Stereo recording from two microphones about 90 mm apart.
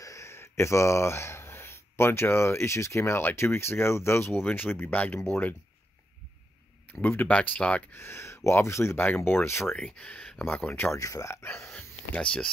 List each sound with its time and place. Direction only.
0.0 s speech: 35° left (ahead or behind)
6.9 s speech: 20° left (ahead or behind)
7.9 s speech: 30° left (ahead or behind)
9.8 s speech: 10° left (ahead or behind)
11.0 s speech: 40° left (ahead or behind)
11.7 s a sound: 15° left (ahead or behind)